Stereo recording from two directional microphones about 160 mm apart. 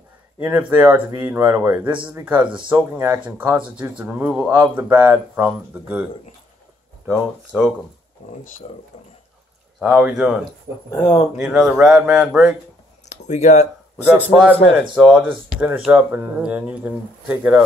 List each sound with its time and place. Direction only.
0.4 s speech: 10° right (ahead or behind)
7.1 s speech: 5° right (ahead or behind)
8.9 s speech: 45° left (ahead or behind)
9.8 s speech: 10° right (ahead or behind)
10.9 s speech: 25° left (ahead or behind)
11.3 s speech: 5° right (ahead or behind)
13.1 s a sound: 45° left (ahead or behind)
14.8 s speech: 10° right (ahead or behind)